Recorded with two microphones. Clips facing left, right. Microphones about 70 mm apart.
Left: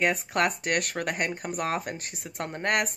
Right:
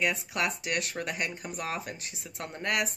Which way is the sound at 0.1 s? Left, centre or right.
Left.